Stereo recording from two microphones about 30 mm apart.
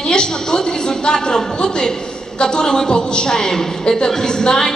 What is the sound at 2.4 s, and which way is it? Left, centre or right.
A woman's voice, left.